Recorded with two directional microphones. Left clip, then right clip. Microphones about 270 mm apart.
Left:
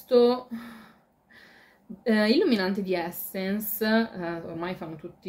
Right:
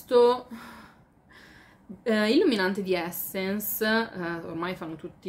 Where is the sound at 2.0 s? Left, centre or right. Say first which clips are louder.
Even; centre.